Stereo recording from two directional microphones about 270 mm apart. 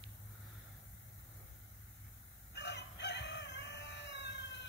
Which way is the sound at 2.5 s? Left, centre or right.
Left.